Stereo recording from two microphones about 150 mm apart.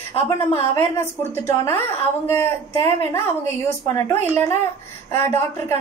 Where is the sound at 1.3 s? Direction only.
15° left (ahead or behind).